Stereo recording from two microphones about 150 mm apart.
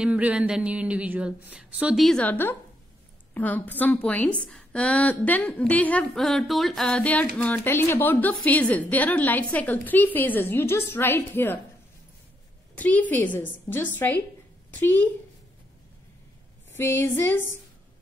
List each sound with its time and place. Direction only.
0.0 s a woman's voice: 10° right (ahead or behind); by 6.0 s 10° left (ahead or behind)
6.1 s music: centre (ahead or behind)
7.4 s a woman's voice: 10° left (ahead or behind)
12.7 s a woman's voice: 10° left (ahead or behind)
16.7 s a woman's voice: 15° left (ahead or behind)